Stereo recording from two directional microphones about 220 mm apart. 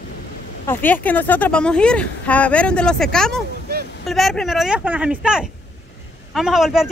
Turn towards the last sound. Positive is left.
turn(degrees=0)  # may be behind; listen again after turning